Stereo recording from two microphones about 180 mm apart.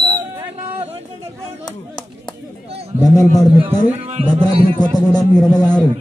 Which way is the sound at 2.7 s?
35° right (ahead or behind).